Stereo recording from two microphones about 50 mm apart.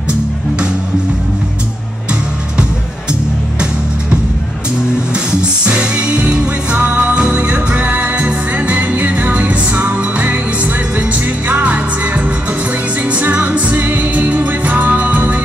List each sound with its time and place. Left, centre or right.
5.1 s music: right